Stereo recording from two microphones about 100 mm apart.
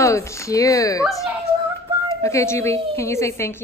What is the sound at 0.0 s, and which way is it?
Speech, 30° left (ahead or behind).